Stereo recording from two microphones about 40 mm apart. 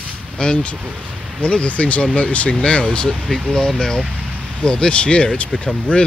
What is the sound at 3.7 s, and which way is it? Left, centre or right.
Speech, centre.